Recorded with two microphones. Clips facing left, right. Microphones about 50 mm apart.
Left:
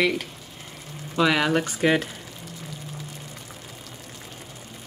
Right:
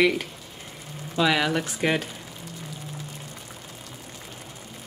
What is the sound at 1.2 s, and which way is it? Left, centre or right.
Speech, centre.